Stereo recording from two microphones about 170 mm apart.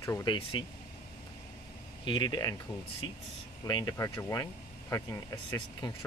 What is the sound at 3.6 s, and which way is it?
Speech, 25° left (ahead or behind).